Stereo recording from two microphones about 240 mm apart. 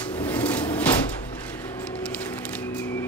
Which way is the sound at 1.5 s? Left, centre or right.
Centre.